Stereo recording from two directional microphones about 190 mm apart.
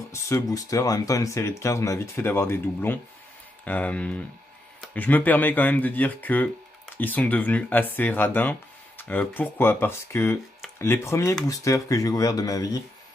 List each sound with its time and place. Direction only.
0.1 s speech: 15° left (ahead or behind)